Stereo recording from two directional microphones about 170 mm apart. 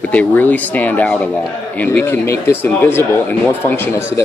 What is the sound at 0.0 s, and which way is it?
Speech, 10° left (ahead or behind).